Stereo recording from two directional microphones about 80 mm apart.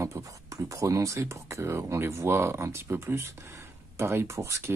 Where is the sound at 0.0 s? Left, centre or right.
Right.